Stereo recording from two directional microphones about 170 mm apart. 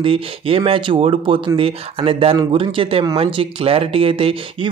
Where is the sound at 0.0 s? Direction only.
30° right (ahead or behind).